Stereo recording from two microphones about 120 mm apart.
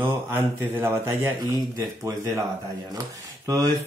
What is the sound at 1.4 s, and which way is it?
Speech, 30° right (ahead or behind).